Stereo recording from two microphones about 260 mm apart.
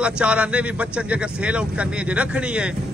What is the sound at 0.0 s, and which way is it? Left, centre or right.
Speech, centre.